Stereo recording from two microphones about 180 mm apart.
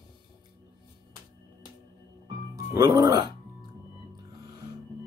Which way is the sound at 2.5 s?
20° right (ahead or behind).